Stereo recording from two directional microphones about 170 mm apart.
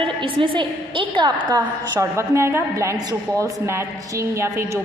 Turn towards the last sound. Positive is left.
turn(degrees=-15)  # may be behind; listen again after turning